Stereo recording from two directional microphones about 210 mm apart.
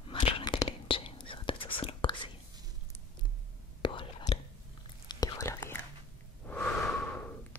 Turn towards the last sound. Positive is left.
turn(degrees=10)  # may be behind; listen again after turning